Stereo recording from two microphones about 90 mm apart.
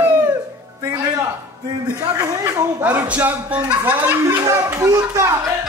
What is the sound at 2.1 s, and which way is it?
Speech, 30° right (ahead or behind).